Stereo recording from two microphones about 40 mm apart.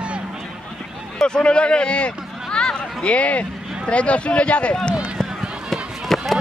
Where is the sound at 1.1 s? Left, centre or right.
Left.